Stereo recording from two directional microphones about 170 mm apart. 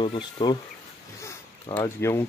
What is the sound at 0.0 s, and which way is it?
Speech, 30° left (ahead or behind).